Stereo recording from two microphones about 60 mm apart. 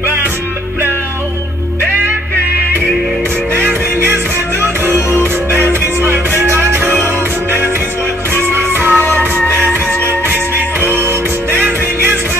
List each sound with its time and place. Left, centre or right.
3.5 s music: right
8.4 s music: right